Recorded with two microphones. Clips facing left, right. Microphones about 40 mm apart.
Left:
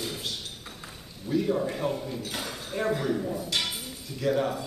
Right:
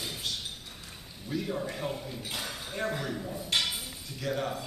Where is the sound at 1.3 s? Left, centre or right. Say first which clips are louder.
Left 7 dB; centre.